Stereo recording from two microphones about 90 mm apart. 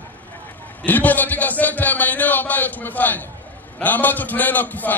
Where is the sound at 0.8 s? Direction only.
20° left (ahead or behind).